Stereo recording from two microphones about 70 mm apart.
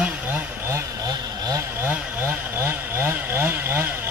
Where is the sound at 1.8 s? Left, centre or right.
Right.